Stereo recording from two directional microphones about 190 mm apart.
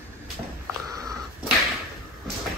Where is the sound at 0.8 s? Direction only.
20° right (ahead or behind).